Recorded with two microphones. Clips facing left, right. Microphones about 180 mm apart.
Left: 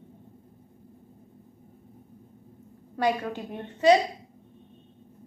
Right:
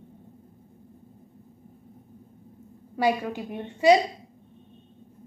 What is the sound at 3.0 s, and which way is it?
A woman's voice, 10° right (ahead or behind).